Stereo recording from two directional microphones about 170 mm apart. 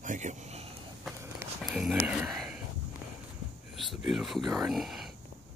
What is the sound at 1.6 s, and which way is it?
Speech, centre (ahead or behind).